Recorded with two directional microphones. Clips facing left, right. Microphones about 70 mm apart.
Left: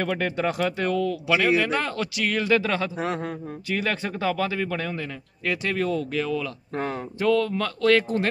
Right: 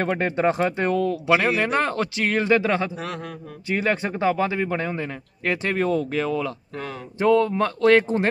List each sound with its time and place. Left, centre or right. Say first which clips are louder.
0.0 s speech: right 4 dB; right
3.0 s a man's voice: left 4 dB; left
3.6 s speech: right 4 dB; right
6.7 s speech: left 4 dB; left
7.2 s speech: right 4 dB; right